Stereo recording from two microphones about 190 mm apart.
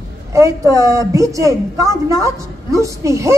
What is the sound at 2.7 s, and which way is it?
Speech, 15° right (ahead or behind).